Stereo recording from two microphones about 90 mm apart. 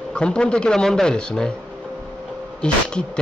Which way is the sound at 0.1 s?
10° left (ahead or behind).